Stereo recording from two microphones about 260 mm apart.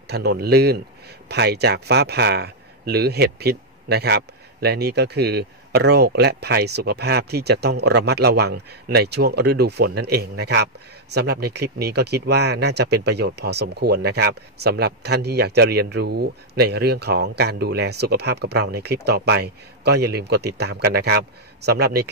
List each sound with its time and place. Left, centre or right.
0.1 s speech: right